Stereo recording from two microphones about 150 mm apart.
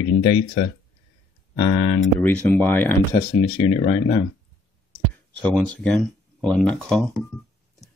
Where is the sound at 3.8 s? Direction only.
40° left (ahead or behind).